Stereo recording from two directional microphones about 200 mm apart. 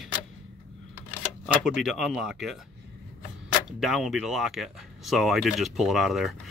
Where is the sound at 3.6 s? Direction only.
Centre (ahead or behind).